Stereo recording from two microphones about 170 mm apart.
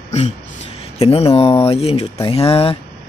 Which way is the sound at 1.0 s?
35° left (ahead or behind).